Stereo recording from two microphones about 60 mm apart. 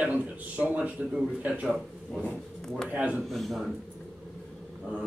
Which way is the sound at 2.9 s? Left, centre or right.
Right.